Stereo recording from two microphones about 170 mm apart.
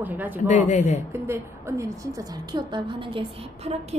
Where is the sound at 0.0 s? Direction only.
10° right (ahead or behind).